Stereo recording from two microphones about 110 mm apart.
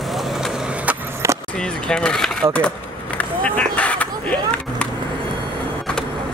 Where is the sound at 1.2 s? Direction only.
25° right (ahead or behind).